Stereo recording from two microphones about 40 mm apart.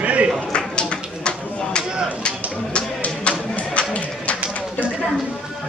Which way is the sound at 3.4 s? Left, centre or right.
Left.